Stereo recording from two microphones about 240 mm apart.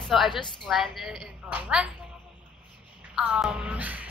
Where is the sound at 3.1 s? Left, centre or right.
Centre.